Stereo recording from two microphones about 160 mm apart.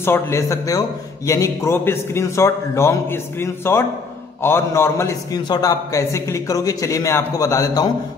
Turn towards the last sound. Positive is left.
turn(degrees=20)  # may be behind; listen again after turning